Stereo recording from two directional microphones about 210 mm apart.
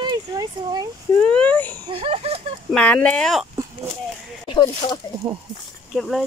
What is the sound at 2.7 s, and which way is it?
Speech, 5° left (ahead or behind).